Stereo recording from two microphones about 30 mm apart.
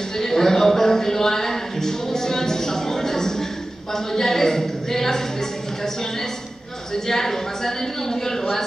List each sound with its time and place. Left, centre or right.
0.2 s a sound: centre
3.9 s a woman's voice: centre
6.9 s a man's voice: centre